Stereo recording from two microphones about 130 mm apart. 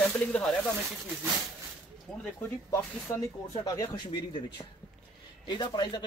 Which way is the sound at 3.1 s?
25° left (ahead or behind).